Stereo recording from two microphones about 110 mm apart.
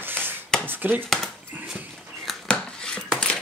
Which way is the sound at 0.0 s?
20° right (ahead or behind).